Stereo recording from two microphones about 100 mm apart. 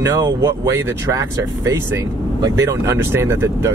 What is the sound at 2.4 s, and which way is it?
Speech, 30° right (ahead or behind).